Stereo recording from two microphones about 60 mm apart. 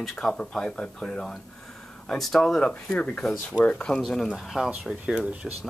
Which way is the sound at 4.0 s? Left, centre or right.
Centre.